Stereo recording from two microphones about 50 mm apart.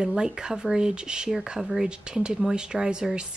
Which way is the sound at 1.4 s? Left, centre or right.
Centre.